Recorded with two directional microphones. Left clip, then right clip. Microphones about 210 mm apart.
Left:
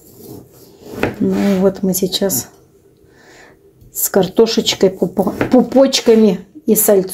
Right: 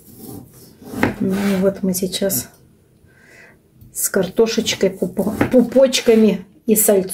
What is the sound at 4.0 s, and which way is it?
Speech, 20° left (ahead or behind).